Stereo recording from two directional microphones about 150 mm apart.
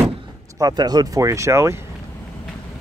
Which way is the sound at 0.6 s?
25° right (ahead or behind).